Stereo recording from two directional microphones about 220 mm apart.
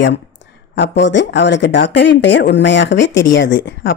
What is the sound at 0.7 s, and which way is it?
Speech, 55° left (ahead or behind).